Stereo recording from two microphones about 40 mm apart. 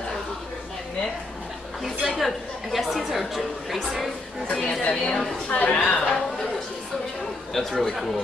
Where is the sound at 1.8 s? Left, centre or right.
Centre.